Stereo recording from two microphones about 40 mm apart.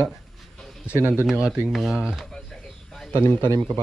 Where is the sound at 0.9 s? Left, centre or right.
Right.